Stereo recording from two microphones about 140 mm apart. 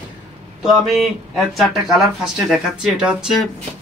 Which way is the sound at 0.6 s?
Centre (ahead or behind).